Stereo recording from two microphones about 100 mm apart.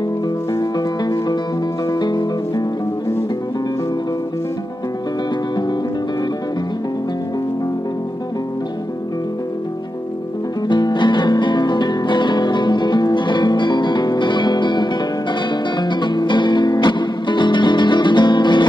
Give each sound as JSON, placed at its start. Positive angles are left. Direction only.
{"t": 0.6, "sound": "music", "side_deg": 40}
{"t": 10.7, "sound": "music", "side_deg": 50}